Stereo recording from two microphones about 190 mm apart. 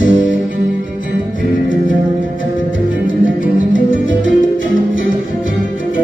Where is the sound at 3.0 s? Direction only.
45° left (ahead or behind).